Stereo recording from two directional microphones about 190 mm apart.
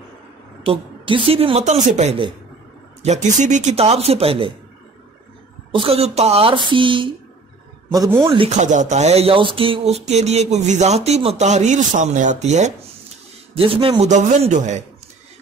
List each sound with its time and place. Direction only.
0.7 s speech: 30° right (ahead or behind)
5.7 s speech: 30° right (ahead or behind)
8.5 s speech: 40° right (ahead or behind)